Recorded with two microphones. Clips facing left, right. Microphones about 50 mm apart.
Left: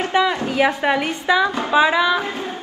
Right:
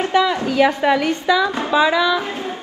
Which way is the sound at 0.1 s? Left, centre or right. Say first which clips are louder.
Right 1 dB; left.